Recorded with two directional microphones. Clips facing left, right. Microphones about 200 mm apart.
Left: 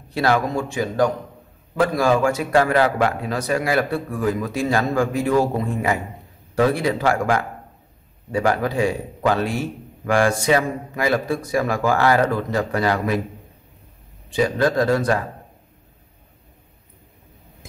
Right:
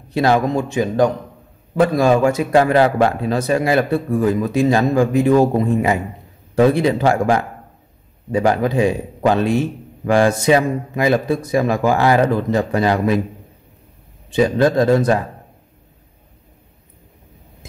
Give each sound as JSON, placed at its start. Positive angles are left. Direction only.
{"t": 0.1, "sound": "a man's voice", "side_deg": -20}
{"t": 14.3, "sound": "a man's voice", "side_deg": -25}